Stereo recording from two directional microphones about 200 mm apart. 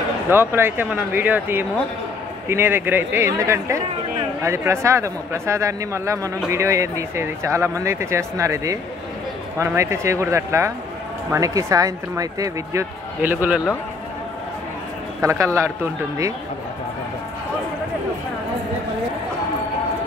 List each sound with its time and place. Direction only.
0.3 s speech: 10° right (ahead or behind)
15.2 s speech: 15° right (ahead or behind)